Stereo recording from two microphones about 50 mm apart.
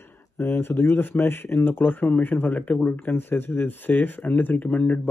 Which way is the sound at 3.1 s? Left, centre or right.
Left.